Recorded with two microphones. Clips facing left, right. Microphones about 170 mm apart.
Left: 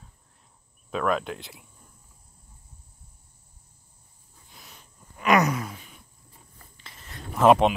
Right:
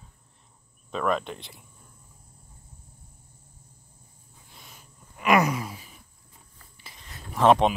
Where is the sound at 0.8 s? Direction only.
5° left (ahead or behind).